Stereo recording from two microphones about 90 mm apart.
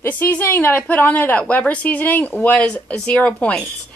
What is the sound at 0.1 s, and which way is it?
A woman's voice, 20° left (ahead or behind).